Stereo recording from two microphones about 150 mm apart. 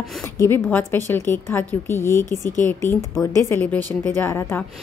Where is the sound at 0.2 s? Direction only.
15° left (ahead or behind).